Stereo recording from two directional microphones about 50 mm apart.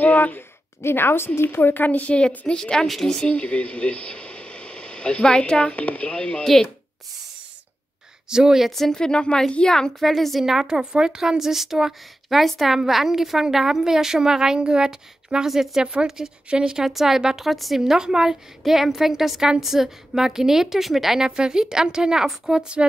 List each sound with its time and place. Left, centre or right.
0.0 s a woman's voice: left
0.8 s a woman's voice: left
2.1 s a woman's voice: centre
3.3 s speech: left
5.6 s speech: left
6.4 s a woman's voice: centre
8.3 s a woman's voice: centre
8.7 s a woman's voice: centre
9.9 s a woman's voice: centre
10.7 s a woman's voice: centre
15.8 s a woman's voice: centre